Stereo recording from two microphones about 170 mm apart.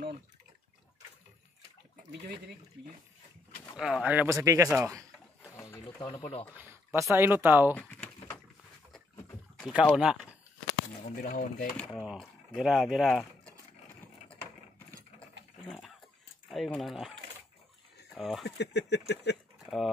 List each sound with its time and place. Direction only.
3.7 s speech: 5° right (ahead or behind)
5.4 s sewing machine: 15° left (ahead or behind)
5.9 s speech: 25° left (ahead or behind)
6.2 s speech: 35° left (ahead or behind)
6.5 s speech: 10° right (ahead or behind)
7.7 s a sound: 10° left (ahead or behind)
9.6 s boat: 5° right (ahead or behind)
9.9 s speech: 5° right (ahead or behind)
11.2 s speech: 50° left (ahead or behind)
11.7 s speech: centre (ahead or behind)
16.4 s speech: centre (ahead or behind)
18.1 s speech: centre (ahead or behind)
18.4 s a sound: 85° left
19.6 s cutlery: centre (ahead or behind)